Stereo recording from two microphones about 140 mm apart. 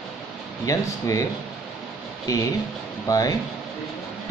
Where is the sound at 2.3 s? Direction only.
25° left (ahead or behind).